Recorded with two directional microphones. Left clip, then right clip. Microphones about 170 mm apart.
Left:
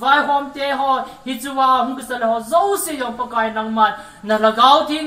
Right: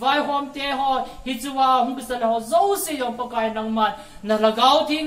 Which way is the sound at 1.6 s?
Centre (ahead or behind).